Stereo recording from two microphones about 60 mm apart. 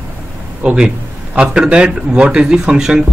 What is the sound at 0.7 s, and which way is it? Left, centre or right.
Speech, centre.